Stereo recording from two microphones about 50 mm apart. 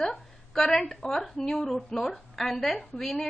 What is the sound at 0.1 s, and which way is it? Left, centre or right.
A woman's voice, centre.